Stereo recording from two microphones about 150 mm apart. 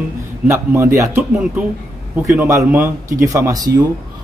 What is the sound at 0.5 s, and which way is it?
Speech, 20° right (ahead or behind).